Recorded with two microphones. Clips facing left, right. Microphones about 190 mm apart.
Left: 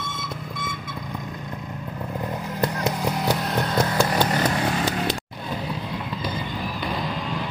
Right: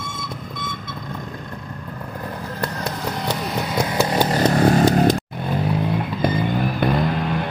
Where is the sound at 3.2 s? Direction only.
5° left (ahead or behind).